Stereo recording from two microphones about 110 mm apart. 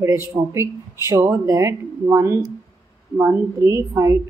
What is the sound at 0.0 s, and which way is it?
A woman's voice, 25° right (ahead or behind).